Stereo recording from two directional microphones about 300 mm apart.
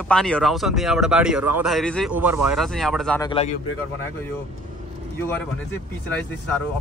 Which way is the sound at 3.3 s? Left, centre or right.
Left.